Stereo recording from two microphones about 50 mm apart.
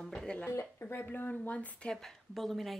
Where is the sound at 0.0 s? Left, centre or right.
Centre.